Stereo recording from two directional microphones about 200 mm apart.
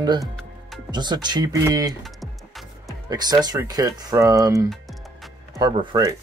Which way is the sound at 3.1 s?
20° right (ahead or behind).